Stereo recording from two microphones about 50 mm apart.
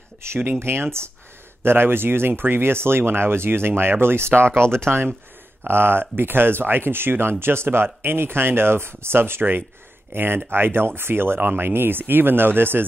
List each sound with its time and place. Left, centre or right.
0.2 s speech: right